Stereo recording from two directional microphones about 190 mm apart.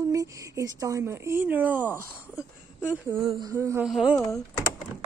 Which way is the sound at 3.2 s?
30° right (ahead or behind).